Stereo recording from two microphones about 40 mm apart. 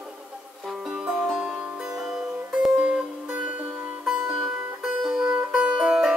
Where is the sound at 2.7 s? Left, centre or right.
Right.